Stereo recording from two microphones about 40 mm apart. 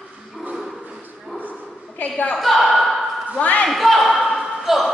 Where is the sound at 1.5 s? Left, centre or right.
Left.